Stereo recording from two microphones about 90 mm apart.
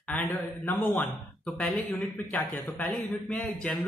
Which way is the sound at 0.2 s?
25° left (ahead or behind).